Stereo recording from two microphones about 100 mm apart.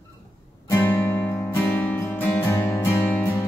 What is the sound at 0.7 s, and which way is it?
Guitar, 25° left (ahead or behind).